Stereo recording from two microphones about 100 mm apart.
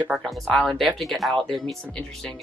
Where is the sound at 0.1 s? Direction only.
Centre (ahead or behind).